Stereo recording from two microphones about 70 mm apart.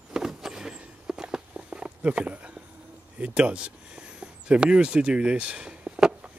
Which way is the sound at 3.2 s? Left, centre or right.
Centre.